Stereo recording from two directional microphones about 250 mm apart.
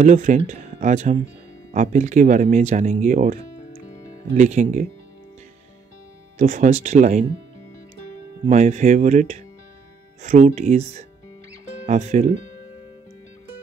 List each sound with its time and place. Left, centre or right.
0.0 s speech: right
6.3 s speech: right
8.5 s speech: right